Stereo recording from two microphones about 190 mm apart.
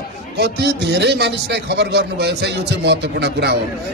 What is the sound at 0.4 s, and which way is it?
A man's voice, 60° right (ahead or behind).